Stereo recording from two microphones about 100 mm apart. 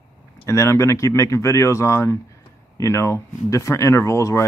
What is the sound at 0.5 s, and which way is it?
Speech, 30° left (ahead or behind).